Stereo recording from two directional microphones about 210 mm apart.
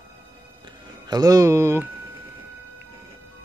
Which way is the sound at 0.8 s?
20° right (ahead or behind).